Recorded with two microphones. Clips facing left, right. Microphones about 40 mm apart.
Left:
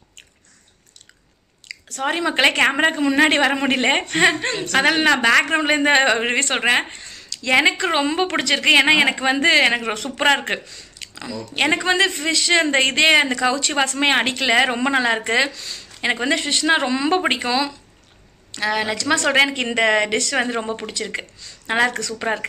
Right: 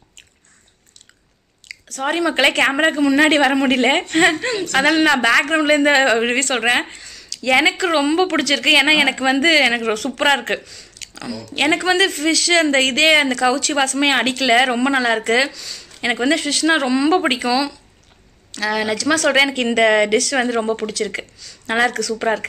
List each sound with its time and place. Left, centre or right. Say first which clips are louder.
2.0 s speech: right 2 dB; centre
2.5 s speech: right 1 dB; centre
5.7 s speech: right 3 dB; centre
10.5 s speech: right 2 dB; left
11.5 s speech: right 2 dB; centre
15.5 s speech: even; left
16.0 s speech: right 2 dB; centre
20.2 s speech: right 3 dB; centre